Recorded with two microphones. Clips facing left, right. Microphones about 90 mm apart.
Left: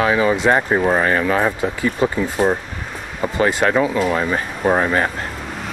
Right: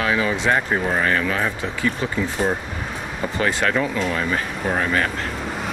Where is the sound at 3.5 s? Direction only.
15° left (ahead or behind).